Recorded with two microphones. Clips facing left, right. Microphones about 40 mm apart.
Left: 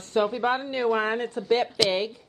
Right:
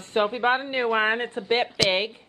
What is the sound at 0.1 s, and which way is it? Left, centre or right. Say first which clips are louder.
A woman's voice: right 1 dB; right.